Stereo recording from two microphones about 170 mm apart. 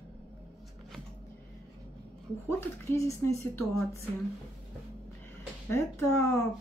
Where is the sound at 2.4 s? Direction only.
15° left (ahead or behind).